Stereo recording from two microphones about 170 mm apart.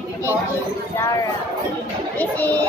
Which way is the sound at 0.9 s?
20° left (ahead or behind).